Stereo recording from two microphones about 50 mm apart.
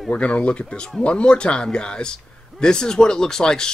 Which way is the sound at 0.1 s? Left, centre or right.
Left.